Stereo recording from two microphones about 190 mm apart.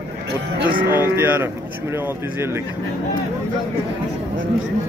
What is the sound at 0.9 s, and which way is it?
Speech, 10° right (ahead or behind).